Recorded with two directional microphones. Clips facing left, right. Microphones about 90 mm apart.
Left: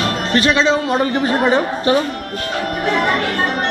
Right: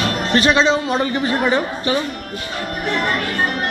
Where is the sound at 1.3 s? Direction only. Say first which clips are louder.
Left 3 dB; 25° left (ahead or behind).